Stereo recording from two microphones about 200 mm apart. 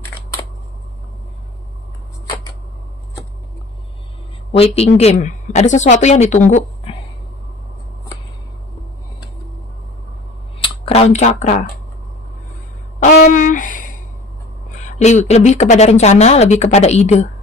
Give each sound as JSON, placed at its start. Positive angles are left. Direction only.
{"t": 4.5, "sound": "a woman's voice", "side_deg": 30}
{"t": 10.6, "sound": "speech", "side_deg": 35}
{"t": 13.0, "sound": "a sound", "side_deg": 40}
{"t": 14.9, "sound": "speech", "side_deg": 35}